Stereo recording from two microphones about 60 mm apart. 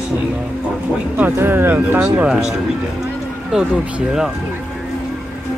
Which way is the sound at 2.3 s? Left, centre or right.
Centre.